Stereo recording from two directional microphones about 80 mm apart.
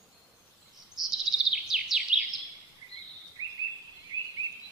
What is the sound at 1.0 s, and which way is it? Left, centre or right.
Chirp, left.